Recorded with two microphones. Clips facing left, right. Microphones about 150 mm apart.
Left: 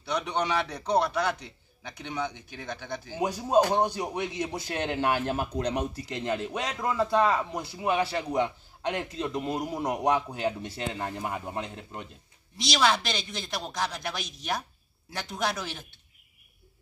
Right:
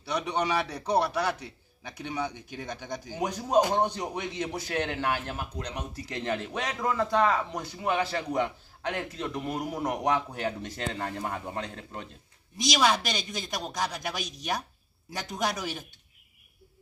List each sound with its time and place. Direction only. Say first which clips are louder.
0.0 s a man's voice: even; 5° right (ahead or behind)
3.2 s a man's voice: left 1 dB; 10° left (ahead or behind); by 5.8 s 25° left (ahead or behind)
5.8 s speech: left 4 dB; 15° left (ahead or behind)
12.5 s a man's voice: even; 15° right (ahead or behind)
15.3 s a man's voice: even; 15° right (ahead or behind)